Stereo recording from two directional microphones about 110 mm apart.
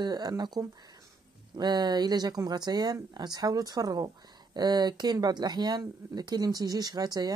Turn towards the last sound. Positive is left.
turn(degrees=-35)  # may be behind; listen again after turning